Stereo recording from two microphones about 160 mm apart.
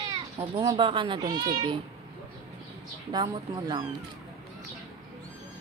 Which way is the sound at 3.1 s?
30° right (ahead or behind).